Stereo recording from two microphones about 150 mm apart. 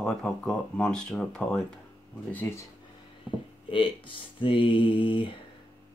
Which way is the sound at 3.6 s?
35° left (ahead or behind).